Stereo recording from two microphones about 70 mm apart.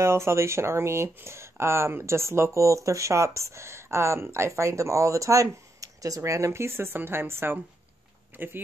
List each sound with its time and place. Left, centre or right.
0.0 s speech: right